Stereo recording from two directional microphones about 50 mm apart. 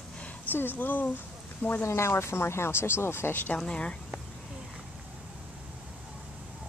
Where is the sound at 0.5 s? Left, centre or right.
Left.